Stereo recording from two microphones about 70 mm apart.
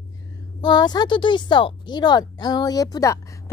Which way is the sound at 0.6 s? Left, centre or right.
Left.